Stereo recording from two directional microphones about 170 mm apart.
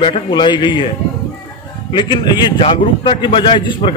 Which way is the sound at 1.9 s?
25° left (ahead or behind).